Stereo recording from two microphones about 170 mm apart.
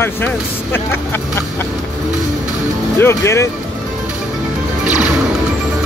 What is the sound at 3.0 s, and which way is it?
Speech, 15° left (ahead or behind).